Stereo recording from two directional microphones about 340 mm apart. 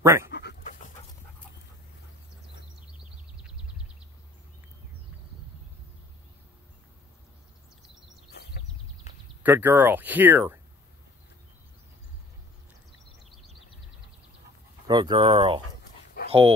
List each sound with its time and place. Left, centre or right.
0.0 s speech: centre
0.3 s dog: left
8.3 s a sound: left
9.4 s speech: centre
13.2 s a sound: centre
14.9 s speech: centre